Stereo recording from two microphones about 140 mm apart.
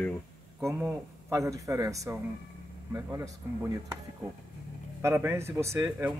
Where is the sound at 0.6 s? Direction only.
20° right (ahead or behind).